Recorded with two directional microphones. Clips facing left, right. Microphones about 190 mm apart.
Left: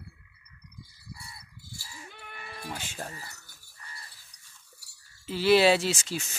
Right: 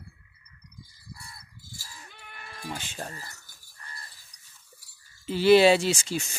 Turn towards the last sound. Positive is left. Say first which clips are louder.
# right 3 dB
turn(degrees=5)  # may be behind; listen again after turning